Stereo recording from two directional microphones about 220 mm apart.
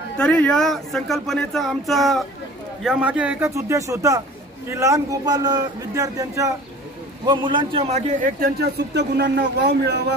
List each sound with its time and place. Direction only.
0.2 s a man's voice: 5° left (ahead or behind); by 10.1 s 50° right (ahead or behind)